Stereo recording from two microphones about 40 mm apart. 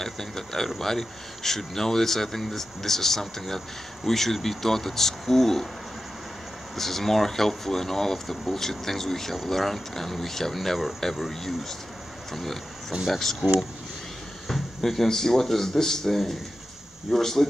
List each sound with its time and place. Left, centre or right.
0.0 s a sound: centre
0.7 s speech: centre
6.7 s speech: centre
13.4 s speech: right
14.8 s speech: centre